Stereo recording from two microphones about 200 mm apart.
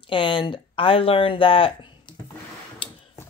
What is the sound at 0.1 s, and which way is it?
Speech, 25° left (ahead or behind).